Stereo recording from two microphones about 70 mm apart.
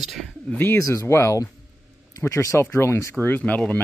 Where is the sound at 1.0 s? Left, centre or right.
Left.